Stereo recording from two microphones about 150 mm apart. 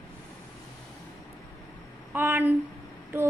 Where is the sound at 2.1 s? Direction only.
15° right (ahead or behind).